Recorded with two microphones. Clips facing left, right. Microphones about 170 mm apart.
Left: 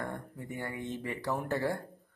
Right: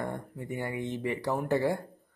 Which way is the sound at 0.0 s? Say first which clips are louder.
Right 4 dB; 20° right (ahead or behind).